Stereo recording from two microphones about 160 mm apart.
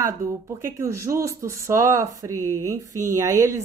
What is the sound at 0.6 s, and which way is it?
Speech, 20° right (ahead or behind).